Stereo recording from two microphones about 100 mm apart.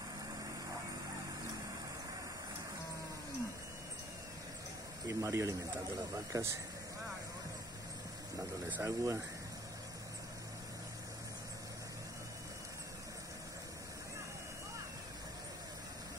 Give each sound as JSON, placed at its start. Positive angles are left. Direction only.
{"t": 5.0, "sound": "speech", "side_deg": -30}
{"t": 8.8, "sound": "speech", "side_deg": -30}